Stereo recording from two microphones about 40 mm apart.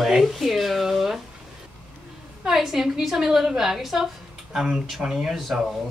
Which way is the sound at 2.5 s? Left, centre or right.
Centre.